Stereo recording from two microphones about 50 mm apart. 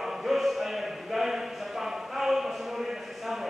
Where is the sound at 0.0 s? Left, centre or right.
Centre.